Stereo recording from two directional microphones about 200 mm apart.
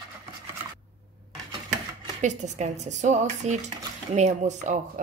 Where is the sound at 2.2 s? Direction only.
35° right (ahead or behind).